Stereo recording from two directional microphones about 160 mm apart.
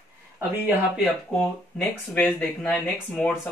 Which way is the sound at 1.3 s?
5° left (ahead or behind).